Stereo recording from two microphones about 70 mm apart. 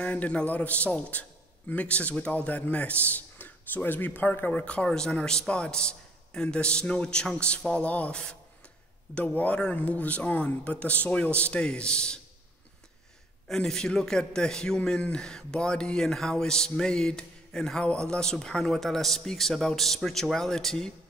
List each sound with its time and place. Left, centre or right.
0.0 s a man's voice: centre
13.5 s a man's voice: centre